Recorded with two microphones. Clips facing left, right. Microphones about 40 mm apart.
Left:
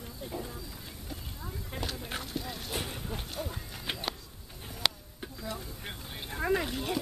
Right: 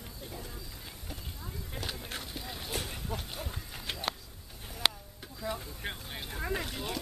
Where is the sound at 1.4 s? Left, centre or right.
Centre.